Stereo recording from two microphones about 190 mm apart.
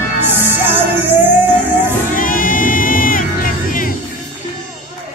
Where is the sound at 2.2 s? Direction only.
45° left (ahead or behind).